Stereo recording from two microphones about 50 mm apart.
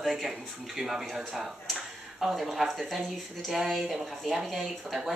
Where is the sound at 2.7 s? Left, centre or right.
Centre.